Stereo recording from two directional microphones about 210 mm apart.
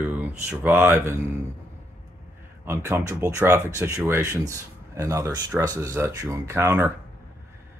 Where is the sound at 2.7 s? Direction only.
10° right (ahead or behind).